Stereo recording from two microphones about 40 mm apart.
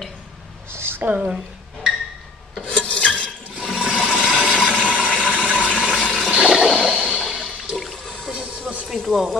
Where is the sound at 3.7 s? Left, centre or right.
Right.